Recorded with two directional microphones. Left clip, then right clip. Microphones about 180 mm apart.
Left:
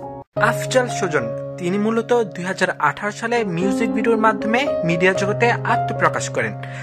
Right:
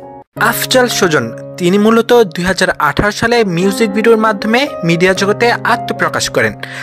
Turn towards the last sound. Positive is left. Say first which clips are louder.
# right 6 dB
turn(degrees=-25)  # may be behind; listen again after turning